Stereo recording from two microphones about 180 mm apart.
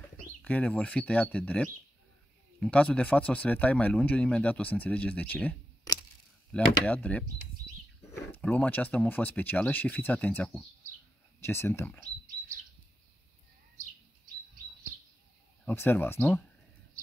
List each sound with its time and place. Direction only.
0.4 s speech: 10° left (ahead or behind)
15.6 s speech: 10° left (ahead or behind)